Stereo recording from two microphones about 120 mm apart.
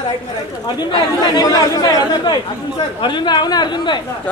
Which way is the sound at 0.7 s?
35° left (ahead or behind).